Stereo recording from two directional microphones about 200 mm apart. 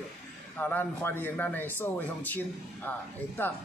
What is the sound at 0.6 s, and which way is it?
A man's voice, 10° left (ahead or behind).